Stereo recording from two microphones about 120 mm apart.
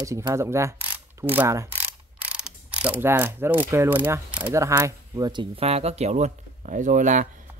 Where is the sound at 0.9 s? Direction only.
15° right (ahead or behind).